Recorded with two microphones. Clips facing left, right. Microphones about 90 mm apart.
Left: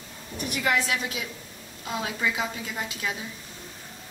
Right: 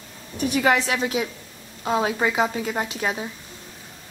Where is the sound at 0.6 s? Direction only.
50° right (ahead or behind).